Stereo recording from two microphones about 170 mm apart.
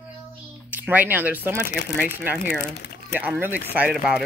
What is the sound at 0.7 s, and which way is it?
Speech, 10° right (ahead or behind).